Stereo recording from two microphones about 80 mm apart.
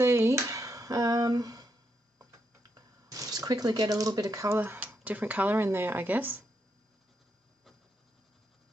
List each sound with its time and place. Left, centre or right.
0.0 s a sound: right
3.1 s speech: right
4.6 s speech: right